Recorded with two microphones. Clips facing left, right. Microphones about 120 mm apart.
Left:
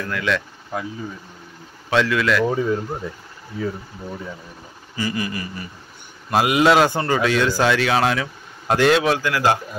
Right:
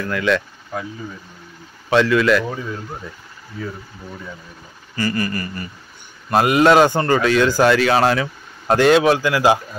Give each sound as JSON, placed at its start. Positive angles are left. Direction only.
{"t": 0.0, "sound": "speech", "side_deg": 0}
{"t": 1.9, "sound": "speech", "side_deg": 0}
{"t": 2.4, "sound": "speech", "side_deg": 30}
{"t": 4.9, "sound": "a sound", "side_deg": 10}
{"t": 6.3, "sound": "speech", "side_deg": 5}